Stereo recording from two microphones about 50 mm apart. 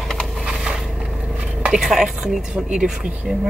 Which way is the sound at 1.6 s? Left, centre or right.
Centre.